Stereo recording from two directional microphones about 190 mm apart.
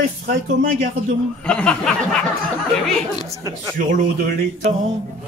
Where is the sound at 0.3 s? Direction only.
45° right (ahead or behind).